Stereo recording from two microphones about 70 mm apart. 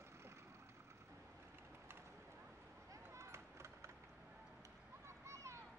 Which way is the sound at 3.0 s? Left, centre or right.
Right.